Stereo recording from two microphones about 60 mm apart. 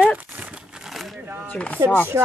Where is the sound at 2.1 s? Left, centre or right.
Right.